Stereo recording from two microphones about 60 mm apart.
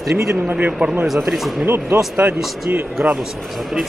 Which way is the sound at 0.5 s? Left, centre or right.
Right.